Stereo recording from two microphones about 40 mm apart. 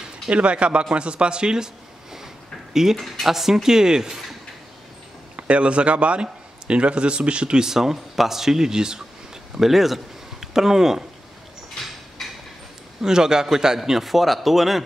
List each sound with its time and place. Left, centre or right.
0.3 s speech: right
2.7 s speech: centre
5.3 s a man's voice: right
9.6 s speech: centre
12.2 s a sound: centre
13.0 s speech: centre